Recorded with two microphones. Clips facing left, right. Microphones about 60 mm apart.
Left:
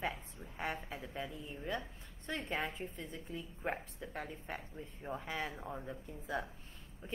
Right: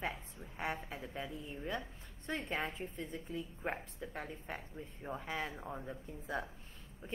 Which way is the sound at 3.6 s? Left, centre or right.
Centre.